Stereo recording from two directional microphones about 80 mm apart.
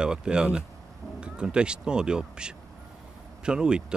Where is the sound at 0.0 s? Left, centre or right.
Centre.